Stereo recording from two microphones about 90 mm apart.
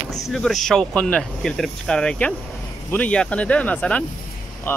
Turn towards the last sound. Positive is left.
turn(degrees=25)  # may be behind; listen again after turning